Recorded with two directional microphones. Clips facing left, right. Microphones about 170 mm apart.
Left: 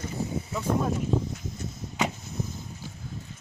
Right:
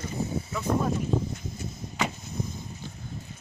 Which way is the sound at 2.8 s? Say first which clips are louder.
Right 1 dB; 5° left (ahead or behind).